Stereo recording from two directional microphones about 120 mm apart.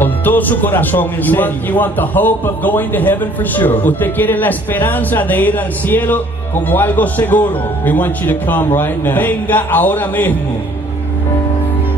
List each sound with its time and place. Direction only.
0.0 s speech: 15° left (ahead or behind)